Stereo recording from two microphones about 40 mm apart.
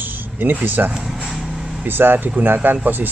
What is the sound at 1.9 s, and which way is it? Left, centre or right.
Speech, right.